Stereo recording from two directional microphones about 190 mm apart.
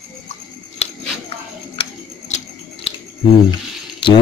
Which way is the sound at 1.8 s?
35° left (ahead or behind).